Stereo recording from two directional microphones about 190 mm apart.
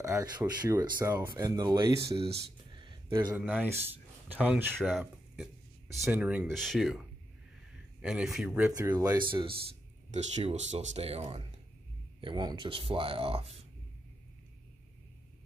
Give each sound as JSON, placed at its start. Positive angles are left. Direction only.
{"t": 0.0, "sound": "speech", "side_deg": -15}
{"t": 1.2, "sound": "speech", "side_deg": -20}
{"t": 2.7, "sound": "a sound", "side_deg": -25}
{"t": 3.3, "sound": "speech", "side_deg": -5}
{"t": 6.1, "sound": "speech", "side_deg": -10}
{"t": 8.0, "sound": "speech", "side_deg": -5}
{"t": 8.7, "sound": "speech", "side_deg": -20}
{"t": 10.1, "sound": "speech", "side_deg": -35}